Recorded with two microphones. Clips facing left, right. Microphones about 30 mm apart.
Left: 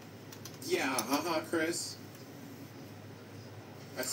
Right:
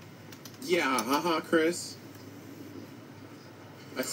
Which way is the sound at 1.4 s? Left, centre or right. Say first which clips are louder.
Right 7 dB; right.